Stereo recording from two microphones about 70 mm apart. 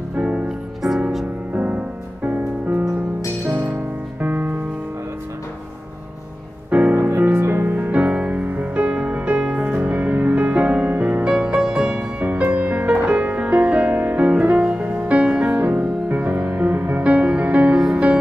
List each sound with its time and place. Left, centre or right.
0.1 s music: centre
1.5 s music: right
4.2 s music: right
6.7 s music: right
7.0 s music: right
7.7 s music: right